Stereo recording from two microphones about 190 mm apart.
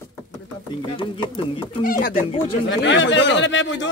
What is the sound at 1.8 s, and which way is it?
Speech, 50° left (ahead or behind).